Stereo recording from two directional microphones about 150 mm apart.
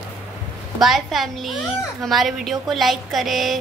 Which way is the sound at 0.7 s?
Centre (ahead or behind).